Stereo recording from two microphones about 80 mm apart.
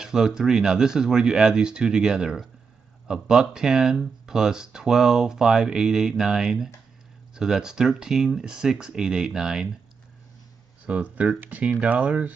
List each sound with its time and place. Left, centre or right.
0.0 s speech: centre
10.9 s speech: centre